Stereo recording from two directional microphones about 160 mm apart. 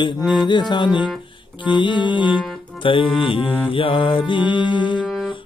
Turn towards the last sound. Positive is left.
turn(degrees=-5)  # may be behind; listen again after turning